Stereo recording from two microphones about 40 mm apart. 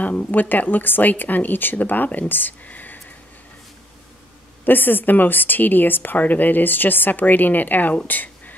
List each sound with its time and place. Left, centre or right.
0.3 s a woman's voice: left
2.6 s whispering: left
4.6 s a woman's voice: left
8.1 s a sound: left